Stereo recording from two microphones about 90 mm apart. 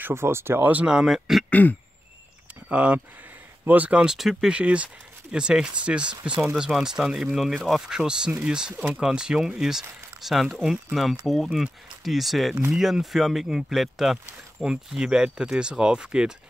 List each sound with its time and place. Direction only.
0.0 s speech: 30° right (ahead or behind); by 1.4 s 5° right (ahead or behind)
1.5 s throat clearing: 20° left (ahead or behind)
2.7 s speech: 15° right (ahead or behind)